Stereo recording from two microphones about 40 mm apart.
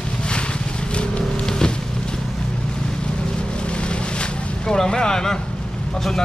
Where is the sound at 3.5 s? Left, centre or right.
Left.